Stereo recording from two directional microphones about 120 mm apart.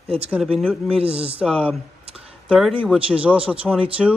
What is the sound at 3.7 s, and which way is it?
Speech, 10° left (ahead or behind).